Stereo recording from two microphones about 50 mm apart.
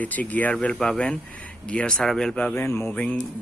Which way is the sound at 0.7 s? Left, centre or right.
Centre.